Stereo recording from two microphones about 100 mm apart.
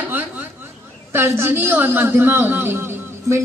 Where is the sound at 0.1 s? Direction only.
20° right (ahead or behind).